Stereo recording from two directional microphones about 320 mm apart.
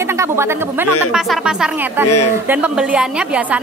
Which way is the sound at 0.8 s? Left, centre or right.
Left.